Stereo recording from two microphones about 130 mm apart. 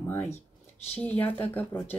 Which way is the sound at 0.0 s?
15° left (ahead or behind).